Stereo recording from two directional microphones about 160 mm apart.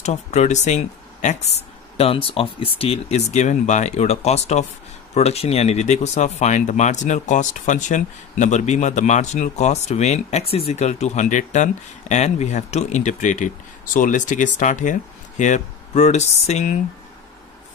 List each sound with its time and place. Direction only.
0.0 s speech: 45° left (ahead or behind)
2.0 s speech: 35° left (ahead or behind)